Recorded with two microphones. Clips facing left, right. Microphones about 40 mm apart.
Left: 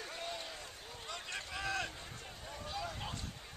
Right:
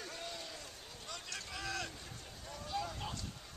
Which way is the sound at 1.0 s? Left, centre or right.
Centre.